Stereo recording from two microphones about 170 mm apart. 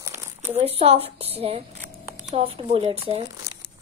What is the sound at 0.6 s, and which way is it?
Speech, 35° right (ahead or behind).